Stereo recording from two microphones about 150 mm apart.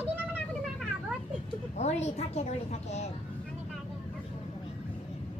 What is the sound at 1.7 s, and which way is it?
A woman's voice, 45° left (ahead or behind).